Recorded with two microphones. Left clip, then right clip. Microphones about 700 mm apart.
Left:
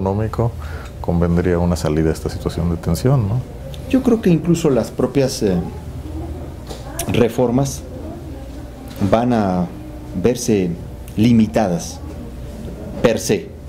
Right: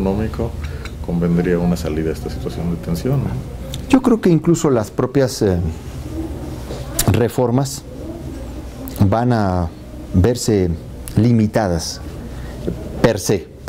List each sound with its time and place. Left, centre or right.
0.0 s speech: left
1.2 s speech: left
3.9 s speech: right
7.0 s speech: right
9.1 s speech: right
13.0 s speech: right